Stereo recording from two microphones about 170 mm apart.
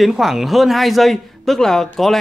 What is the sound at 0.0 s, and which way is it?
A man's voice, centre (ahead or behind).